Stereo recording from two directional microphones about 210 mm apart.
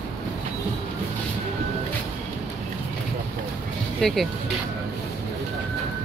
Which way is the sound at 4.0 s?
Centre (ahead or behind).